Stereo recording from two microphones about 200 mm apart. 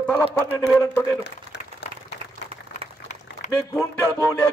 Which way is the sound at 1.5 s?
60° left (ahead or behind).